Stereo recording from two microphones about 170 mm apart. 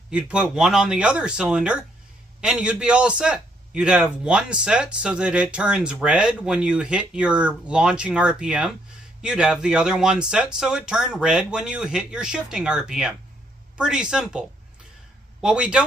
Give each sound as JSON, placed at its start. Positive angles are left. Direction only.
{"t": 0.1, "sound": "a man's voice", "side_deg": -5}
{"t": 15.4, "sound": "a man's voice", "side_deg": -5}